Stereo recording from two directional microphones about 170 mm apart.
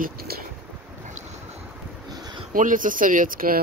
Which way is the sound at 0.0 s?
60° right (ahead or behind).